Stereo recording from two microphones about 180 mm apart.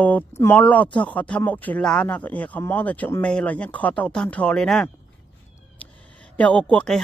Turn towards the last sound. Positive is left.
turn(degrees=5)  # may be behind; listen again after turning